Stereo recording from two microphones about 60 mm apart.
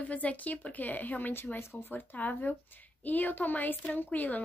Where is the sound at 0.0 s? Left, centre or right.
Left.